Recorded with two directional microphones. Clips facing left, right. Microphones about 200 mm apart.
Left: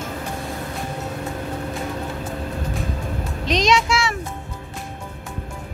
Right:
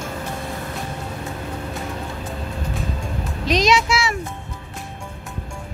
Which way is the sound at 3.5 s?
5° right (ahead or behind).